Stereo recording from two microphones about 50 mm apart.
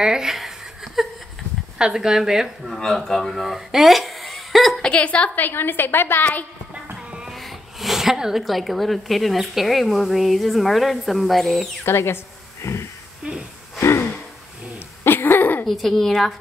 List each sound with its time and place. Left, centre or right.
0.0 s a woman's voice: centre
1.0 s a sound: centre
1.8 s a woman's voice: centre
2.8 s speech: centre
4.8 s a woman's voice: left
5.4 s a woman's voice: left
6.7 s music: right
7.3 s speech: centre
11.8 s speech: left
12.6 s a sound: left
13.2 s wheeze: right
13.7 s gasp: left
15.0 s a sound: left
15.6 s speech: centre